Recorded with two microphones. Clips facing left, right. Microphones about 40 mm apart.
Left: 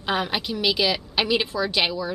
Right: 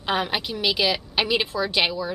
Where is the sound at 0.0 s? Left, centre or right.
Centre.